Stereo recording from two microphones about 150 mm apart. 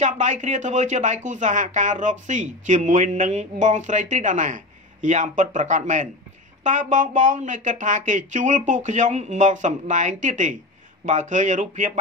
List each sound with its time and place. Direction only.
0.0 s speech: 55° right (ahead or behind)